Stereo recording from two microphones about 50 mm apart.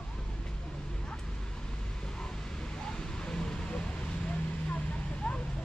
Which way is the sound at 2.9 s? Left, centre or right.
Centre.